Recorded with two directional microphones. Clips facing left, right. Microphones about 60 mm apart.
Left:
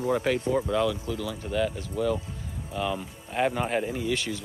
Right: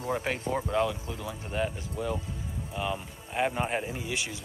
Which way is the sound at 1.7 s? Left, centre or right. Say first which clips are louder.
Left 5 dB; centre.